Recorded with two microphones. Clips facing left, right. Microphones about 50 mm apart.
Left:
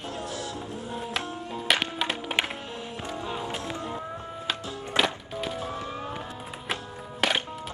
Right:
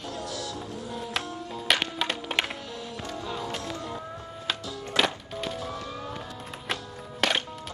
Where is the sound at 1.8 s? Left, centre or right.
Centre.